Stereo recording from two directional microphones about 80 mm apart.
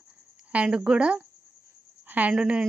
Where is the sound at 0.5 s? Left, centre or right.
Centre.